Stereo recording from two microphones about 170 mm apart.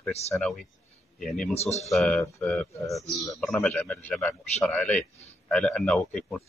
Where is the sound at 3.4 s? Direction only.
5° left (ahead or behind).